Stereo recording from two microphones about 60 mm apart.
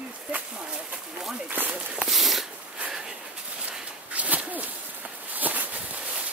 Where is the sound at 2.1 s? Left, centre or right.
Centre.